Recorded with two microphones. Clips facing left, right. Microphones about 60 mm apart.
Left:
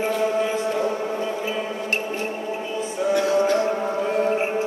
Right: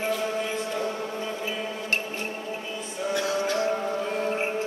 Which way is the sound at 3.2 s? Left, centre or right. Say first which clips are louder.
Left 7 dB; left.